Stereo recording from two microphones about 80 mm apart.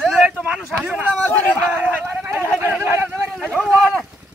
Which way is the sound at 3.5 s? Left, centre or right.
Centre.